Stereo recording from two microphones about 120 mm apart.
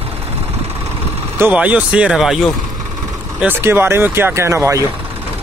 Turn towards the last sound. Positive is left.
turn(degrees=-25)  # may be behind; listen again after turning